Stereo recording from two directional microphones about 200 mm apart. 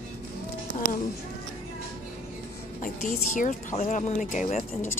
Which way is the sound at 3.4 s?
40° left (ahead or behind).